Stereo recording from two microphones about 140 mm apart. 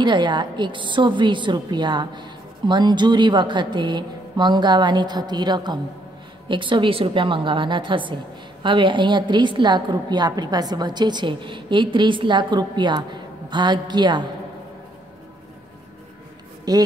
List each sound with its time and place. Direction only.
0.0 s a woman's voice: 35° right (ahead or behind)
16.7 s speech: 30° right (ahead or behind)